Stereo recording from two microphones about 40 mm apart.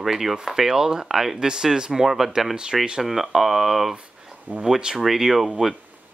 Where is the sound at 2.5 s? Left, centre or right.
Centre.